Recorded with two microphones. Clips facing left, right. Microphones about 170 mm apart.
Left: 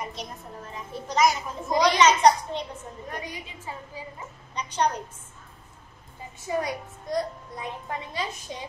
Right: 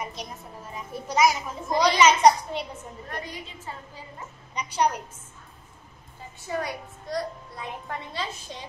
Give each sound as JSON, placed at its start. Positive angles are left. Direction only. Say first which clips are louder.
{"t": 0.0, "sound": "a child's voice", "louder": "even", "side_deg": 0}
{"t": 3.1, "sound": "a woman's voice", "louder": "even", "side_deg": 15}
{"t": 4.6, "sound": "a child's voice", "louder": "right 1 dB", "side_deg": -10}
{"t": 6.4, "sound": "a child's voice", "louder": "left 2 dB", "side_deg": 20}